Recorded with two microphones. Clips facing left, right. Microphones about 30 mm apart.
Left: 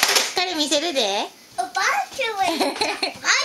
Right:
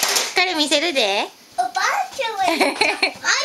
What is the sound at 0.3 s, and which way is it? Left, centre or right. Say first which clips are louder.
Speech: right 4 dB; right.